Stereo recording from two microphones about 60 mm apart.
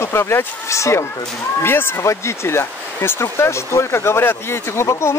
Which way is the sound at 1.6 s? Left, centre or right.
Left.